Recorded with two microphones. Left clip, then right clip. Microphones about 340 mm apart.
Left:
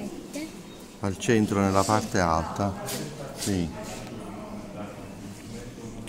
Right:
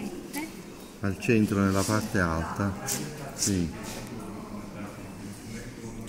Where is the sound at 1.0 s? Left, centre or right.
Left.